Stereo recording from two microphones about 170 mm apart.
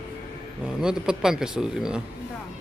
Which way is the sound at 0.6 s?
5° right (ahead or behind).